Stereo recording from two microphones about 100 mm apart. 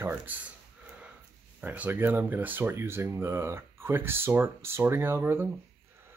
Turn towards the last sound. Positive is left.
turn(degrees=-25)  # may be behind; listen again after turning